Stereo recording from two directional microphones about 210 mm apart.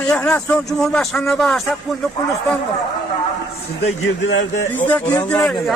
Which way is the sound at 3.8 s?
55° left (ahead or behind).